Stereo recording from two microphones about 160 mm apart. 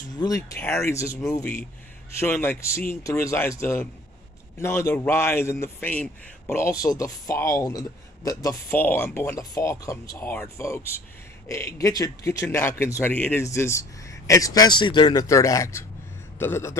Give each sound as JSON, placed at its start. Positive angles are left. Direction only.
{"t": 0.2, "sound": "a man's voice", "side_deg": 20}